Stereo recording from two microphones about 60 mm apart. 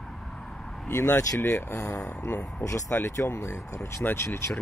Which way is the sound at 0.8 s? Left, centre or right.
Left.